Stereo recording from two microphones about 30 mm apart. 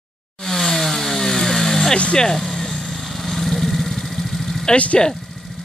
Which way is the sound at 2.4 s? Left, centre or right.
Centre.